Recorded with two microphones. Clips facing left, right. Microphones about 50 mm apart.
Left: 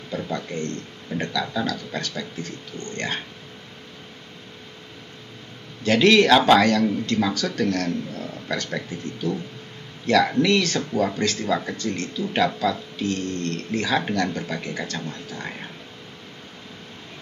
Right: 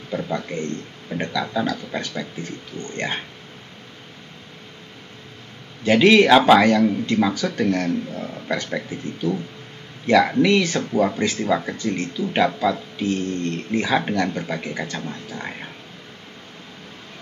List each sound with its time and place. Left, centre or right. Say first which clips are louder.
0.1 s speech: right 3 dB; centre
5.9 s speech: right 2 dB; centre